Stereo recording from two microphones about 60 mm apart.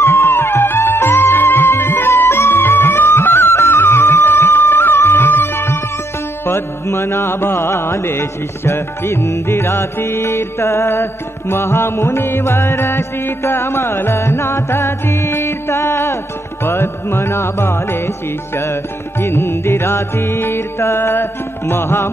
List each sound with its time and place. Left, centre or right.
0.0 s music: left